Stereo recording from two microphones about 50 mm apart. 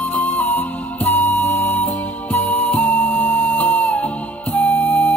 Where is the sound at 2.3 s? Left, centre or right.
Left.